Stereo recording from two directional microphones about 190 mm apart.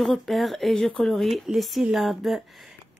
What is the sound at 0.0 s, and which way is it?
Speech, centre (ahead or behind).